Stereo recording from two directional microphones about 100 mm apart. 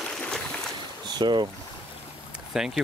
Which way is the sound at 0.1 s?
10° left (ahead or behind).